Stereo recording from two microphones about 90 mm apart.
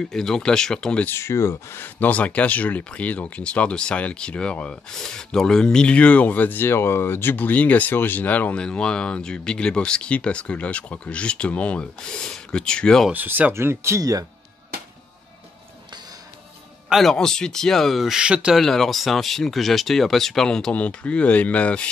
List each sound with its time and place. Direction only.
0.0 s speech: 5° left (ahead or behind)
1.0 s speech: 30° left (ahead or behind); by 13.1 s 10° left (ahead or behind)
13.1 s speech: 20° right (ahead or behind); by 14.2 s 35° right (ahead or behind)
16.9 s speech: 5° left (ahead or behind)
18.6 s speech: 5° left (ahead or behind)